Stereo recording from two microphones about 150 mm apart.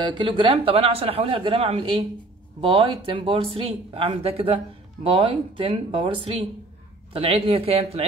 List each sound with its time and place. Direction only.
0.0 s a man's voice: 35° right (ahead or behind)